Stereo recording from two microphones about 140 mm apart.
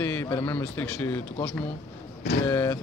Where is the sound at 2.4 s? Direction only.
20° left (ahead or behind).